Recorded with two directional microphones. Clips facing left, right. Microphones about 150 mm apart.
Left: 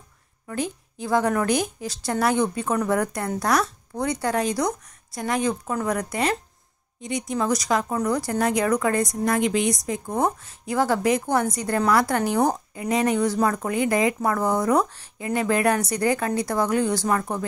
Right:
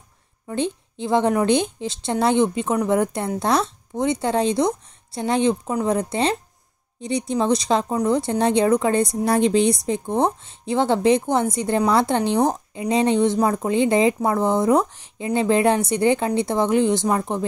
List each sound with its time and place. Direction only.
0.5 s a woman's voice: 25° right (ahead or behind)